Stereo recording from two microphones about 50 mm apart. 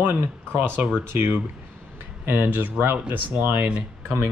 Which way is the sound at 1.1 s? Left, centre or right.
Right.